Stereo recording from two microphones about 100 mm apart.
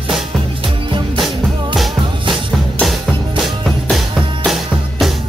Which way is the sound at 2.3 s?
Centre (ahead or behind).